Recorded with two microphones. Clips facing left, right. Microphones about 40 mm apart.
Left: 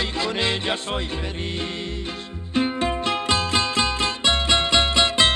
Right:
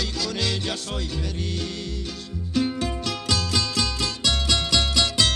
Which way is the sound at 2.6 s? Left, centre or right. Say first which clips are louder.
Left 3 dB; left.